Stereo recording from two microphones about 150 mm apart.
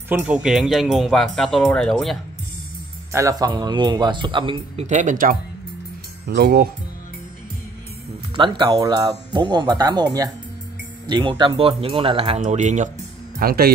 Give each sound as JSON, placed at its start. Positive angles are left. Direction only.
{"t": 0.1, "sound": "speech", "side_deg": -10}
{"t": 3.1, "sound": "speech", "side_deg": -20}
{"t": 4.8, "sound": "speech", "side_deg": -55}
{"t": 6.2, "sound": "speech", "side_deg": -90}
{"t": 8.4, "sound": "speech", "side_deg": -30}
{"t": 12.4, "sound": "speech", "side_deg": -55}
{"t": 13.4, "sound": "speech", "side_deg": -90}